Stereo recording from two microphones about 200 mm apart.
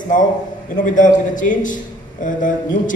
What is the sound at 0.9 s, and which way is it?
A man's voice, 40° left (ahead or behind).